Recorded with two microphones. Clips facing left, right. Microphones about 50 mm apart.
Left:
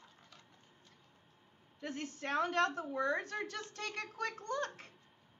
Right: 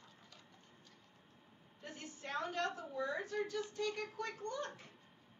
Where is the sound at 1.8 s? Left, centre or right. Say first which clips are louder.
Left 8 dB; left.